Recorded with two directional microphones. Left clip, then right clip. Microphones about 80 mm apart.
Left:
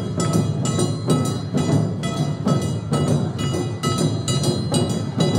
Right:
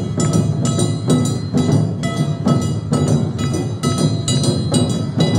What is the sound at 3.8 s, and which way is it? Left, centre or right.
Music, centre.